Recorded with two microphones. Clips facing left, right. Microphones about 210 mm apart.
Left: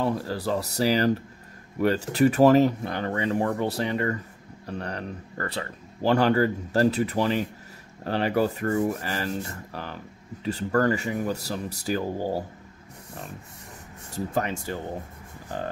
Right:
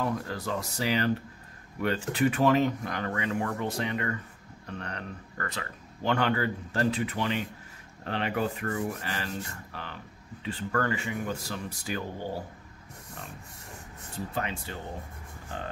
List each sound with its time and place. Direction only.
0.0 s speech: 30° left (ahead or behind)
14.1 s speech: 45° left (ahead or behind)